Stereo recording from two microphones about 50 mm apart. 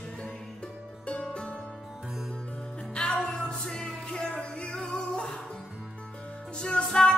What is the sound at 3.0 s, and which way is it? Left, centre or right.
Music, centre.